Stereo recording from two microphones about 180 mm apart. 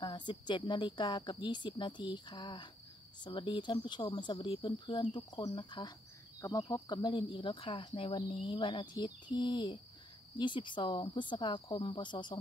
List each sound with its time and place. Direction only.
0.0 s speech: 25° left (ahead or behind)